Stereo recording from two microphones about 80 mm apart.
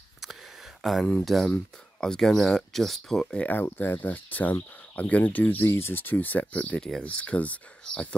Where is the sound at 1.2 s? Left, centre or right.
Centre.